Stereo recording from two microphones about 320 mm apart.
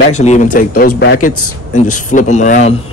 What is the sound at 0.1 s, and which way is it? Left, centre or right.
Speech, left.